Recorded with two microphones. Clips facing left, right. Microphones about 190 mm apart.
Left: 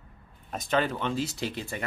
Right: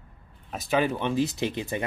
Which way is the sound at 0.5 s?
10° right (ahead or behind).